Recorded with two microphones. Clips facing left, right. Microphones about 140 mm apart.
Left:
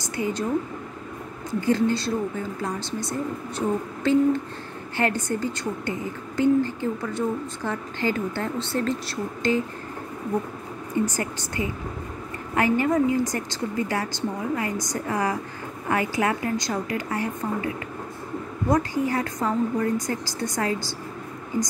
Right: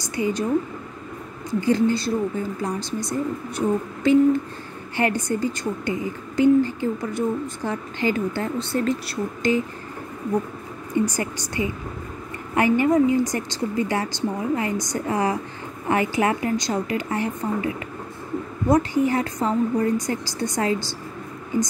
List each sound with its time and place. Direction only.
0.1 s speech: 15° right (ahead or behind)
1.7 s speech: 15° right (ahead or behind)
11.1 s a woman's voice: 15° right (ahead or behind)
18.7 s a woman's voice: 20° right (ahead or behind)